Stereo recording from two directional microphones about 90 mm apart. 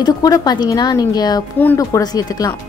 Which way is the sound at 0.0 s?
45° left (ahead or behind).